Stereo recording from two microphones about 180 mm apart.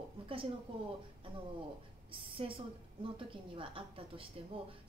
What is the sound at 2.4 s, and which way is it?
A woman's voice, 35° right (ahead or behind).